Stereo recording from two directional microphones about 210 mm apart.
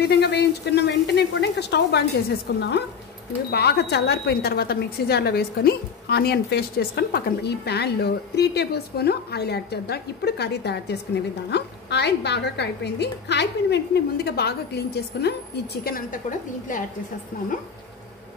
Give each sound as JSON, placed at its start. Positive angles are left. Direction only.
{"t": 0.0, "sound": "a woman's voice", "side_deg": 50}